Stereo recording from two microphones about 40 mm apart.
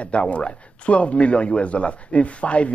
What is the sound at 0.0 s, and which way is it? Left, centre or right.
A man's voice, left.